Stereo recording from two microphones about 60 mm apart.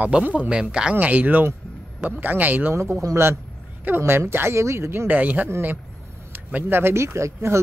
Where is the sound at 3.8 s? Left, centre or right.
Right.